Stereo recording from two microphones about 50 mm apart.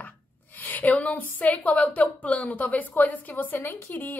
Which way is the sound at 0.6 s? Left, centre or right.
Left.